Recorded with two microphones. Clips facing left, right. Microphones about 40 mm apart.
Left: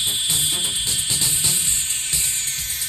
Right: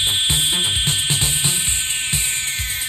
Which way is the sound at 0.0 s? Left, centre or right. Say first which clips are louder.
Right 5 dB; right.